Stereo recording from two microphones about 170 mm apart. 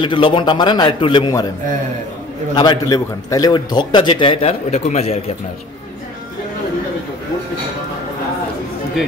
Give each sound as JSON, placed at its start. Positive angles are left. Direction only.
{"t": 0.0, "sound": "a man's voice", "side_deg": 30}
{"t": 2.5, "sound": "a man's voice", "side_deg": 25}